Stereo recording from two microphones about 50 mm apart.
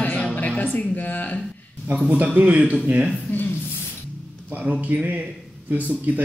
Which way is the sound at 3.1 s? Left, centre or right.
Left.